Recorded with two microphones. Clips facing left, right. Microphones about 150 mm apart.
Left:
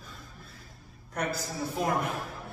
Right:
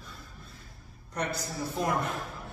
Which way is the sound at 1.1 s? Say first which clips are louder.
Left 1 dB; 5° left (ahead or behind).